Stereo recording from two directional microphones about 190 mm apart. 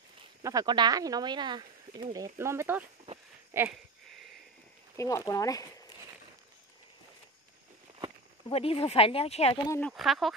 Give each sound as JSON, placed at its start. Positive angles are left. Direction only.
{"t": 0.4, "sound": "speech", "side_deg": -20}
{"t": 2.3, "sound": "speech", "side_deg": -15}
{"t": 4.9, "sound": "speech", "side_deg": 15}
{"t": 8.5, "sound": "speech", "side_deg": 30}
{"t": 9.7, "sound": "speech", "side_deg": 10}